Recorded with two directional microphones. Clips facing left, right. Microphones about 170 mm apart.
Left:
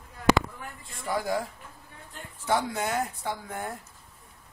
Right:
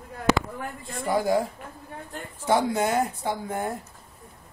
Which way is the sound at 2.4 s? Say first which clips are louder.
Right 5 dB; 20° right (ahead or behind).